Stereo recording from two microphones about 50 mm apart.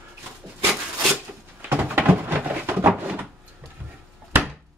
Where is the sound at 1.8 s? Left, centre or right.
Right.